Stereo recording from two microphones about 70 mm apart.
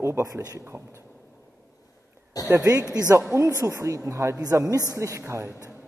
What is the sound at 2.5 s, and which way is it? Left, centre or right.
A woman's voice, right.